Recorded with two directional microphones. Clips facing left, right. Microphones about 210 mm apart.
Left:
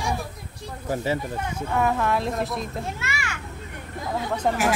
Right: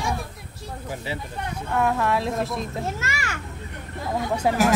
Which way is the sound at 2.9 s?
40° right (ahead or behind).